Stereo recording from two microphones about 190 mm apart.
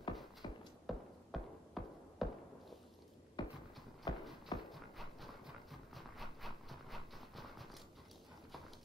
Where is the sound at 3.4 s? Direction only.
25° left (ahead or behind).